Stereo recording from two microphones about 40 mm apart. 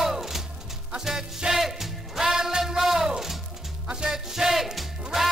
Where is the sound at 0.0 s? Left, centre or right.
Centre.